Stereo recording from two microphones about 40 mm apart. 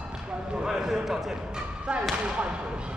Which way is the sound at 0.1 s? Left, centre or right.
Centre.